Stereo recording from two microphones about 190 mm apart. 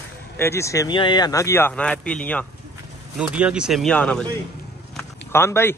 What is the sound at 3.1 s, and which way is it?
Speech, 5° right (ahead or behind).